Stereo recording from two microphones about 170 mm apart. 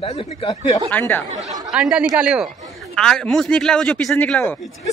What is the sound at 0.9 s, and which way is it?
Speech, 10° left (ahead or behind).